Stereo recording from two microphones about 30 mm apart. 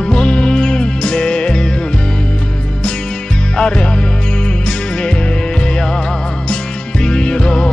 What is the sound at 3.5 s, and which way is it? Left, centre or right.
Music, left.